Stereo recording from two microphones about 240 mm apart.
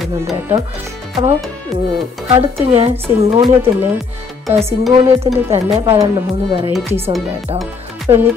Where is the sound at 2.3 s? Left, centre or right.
Right.